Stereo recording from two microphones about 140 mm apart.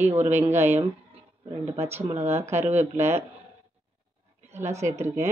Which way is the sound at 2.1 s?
50° right (ahead or behind).